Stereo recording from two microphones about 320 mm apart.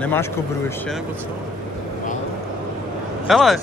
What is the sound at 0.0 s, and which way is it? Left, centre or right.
Speech, centre.